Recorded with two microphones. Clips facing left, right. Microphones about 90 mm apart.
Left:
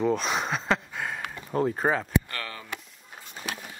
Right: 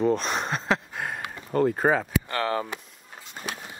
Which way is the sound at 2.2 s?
30° right (ahead or behind).